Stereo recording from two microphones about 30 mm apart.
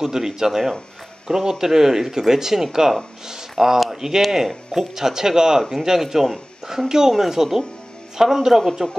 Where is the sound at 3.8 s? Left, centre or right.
Centre.